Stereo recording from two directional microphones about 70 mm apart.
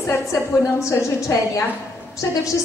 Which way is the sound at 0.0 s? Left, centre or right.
Left.